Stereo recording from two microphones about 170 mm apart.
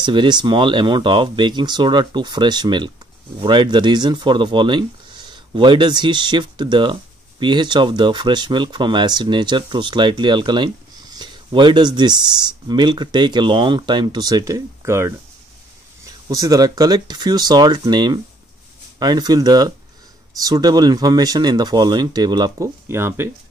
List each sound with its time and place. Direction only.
0.0 s speech: 25° right (ahead or behind)